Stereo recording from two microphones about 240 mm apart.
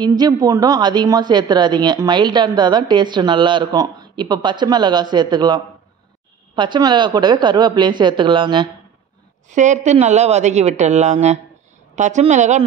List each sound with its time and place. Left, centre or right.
0.0 s a woman's voice: centre
9.5 s speech: right